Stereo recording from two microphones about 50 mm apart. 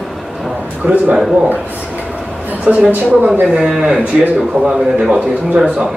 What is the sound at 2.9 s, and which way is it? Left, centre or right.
Speech, right.